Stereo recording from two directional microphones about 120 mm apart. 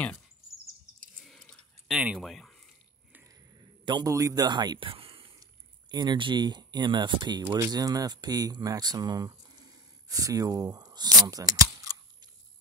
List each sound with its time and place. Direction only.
1.2 s chewing: 5° left (ahead or behind)
2.1 s a sound: centre (ahead or behind)
3.3 s a sound: 35° right (ahead or behind)
4.1 s speech: 30° right (ahead or behind); by 5.2 s 50° right (ahead or behind)
5.4 s speech: 35° right (ahead or behind)
7.4 s speech: 20° right (ahead or behind)